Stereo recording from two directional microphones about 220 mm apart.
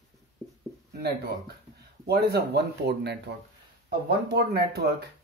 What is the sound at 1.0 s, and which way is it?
Speech, 45° right (ahead or behind).